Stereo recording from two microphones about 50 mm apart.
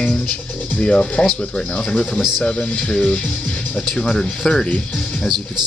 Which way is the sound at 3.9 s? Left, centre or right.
Centre.